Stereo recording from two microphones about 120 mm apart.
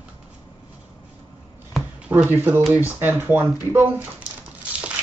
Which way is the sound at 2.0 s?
15° right (ahead or behind).